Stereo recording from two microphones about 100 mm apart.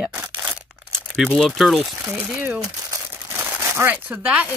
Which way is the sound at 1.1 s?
Centre (ahead or behind).